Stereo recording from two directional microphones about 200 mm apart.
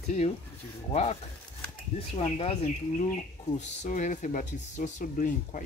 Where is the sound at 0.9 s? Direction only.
30° left (ahead or behind).